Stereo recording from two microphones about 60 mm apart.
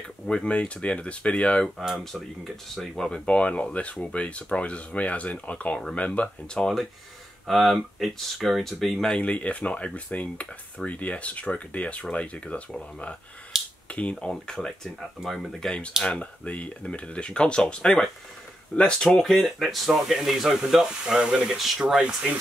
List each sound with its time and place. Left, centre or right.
0.3 s speech: centre
1.9 s speech: centre
3.3 s speech: left
6.6 s speech: centre
9.1 s speech: centre
13.5 s a sound: centre
13.8 s speech: left
14.3 s speech: centre
16.0 s speech: left
19.0 s speech: centre